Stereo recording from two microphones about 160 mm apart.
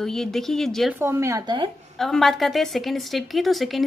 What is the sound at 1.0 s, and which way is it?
Speech, 15° right (ahead or behind).